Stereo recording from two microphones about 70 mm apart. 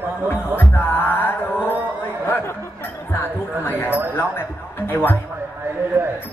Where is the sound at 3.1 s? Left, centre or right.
Left.